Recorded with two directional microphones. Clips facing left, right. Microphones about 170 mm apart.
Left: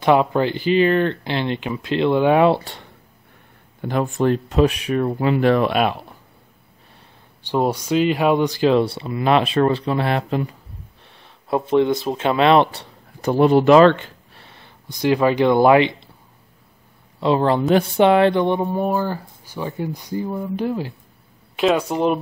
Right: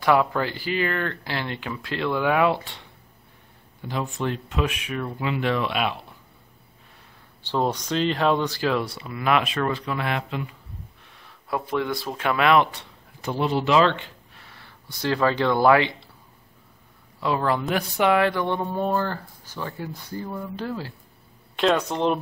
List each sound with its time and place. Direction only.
0.0 s speech: 20° left (ahead or behind)
3.8 s speech: 55° left (ahead or behind)
7.4 s speech: 10° left (ahead or behind); by 10.5 s 40° left (ahead or behind)
11.1 s speech: 25° left (ahead or behind)
13.2 s speech: 50° left (ahead or behind)
14.4 s speech: 20° left (ahead or behind)
17.2 s speech: 25° left (ahead or behind); by 22.2 s 5° left (ahead or behind)